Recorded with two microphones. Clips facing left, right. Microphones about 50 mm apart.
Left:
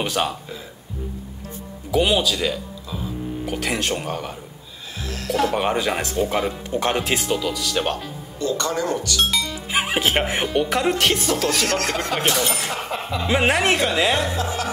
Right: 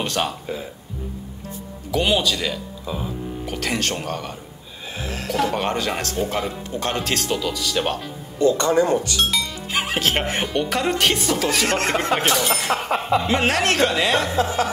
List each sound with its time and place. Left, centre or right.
0.0 s speech: centre
1.9 s speech: centre
4.9 s music: right
5.3 s speech: centre
7.2 s speech: centre
8.4 s speech: right
9.3 s music: centre
9.6 s speech: centre
11.6 s speech: right
12.2 s speech: centre
12.9 s speech: right
13.3 s speech: centre
14.2 s speech: right